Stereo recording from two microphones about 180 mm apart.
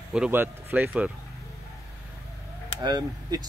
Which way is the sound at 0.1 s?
10° right (ahead or behind).